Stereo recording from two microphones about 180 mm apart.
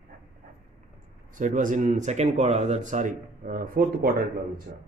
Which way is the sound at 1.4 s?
45° right (ahead or behind).